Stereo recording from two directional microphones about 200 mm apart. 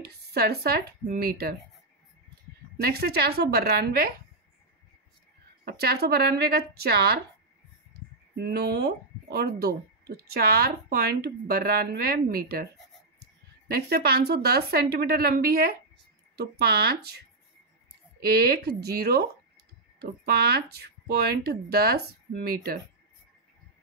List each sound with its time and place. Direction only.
0.0 s speech: 50° right (ahead or behind)
2.8 s speech: 50° right (ahead or behind)
5.7 s speech: 50° right (ahead or behind)
8.4 s speech: 55° right (ahead or behind)
13.7 s speech: 50° right (ahead or behind)
18.2 s speech: 50° right (ahead or behind)